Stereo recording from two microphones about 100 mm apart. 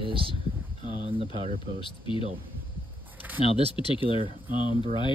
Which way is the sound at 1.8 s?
60° left (ahead or behind).